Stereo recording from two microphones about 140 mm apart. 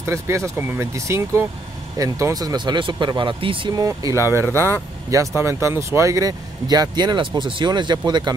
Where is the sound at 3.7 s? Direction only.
25° right (ahead or behind).